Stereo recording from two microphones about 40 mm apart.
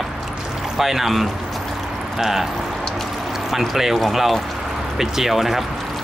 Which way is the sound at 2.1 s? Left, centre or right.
Centre.